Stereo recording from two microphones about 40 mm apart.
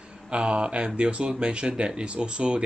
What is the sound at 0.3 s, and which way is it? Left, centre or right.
Speech, right.